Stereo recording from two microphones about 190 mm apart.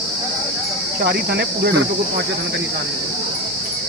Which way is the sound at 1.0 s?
60° right (ahead or behind).